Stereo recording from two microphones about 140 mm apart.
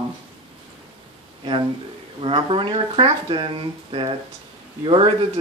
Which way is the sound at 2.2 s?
40° right (ahead or behind).